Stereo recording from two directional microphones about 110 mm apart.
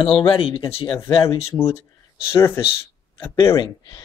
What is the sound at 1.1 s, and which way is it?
Speech, 65° left (ahead or behind).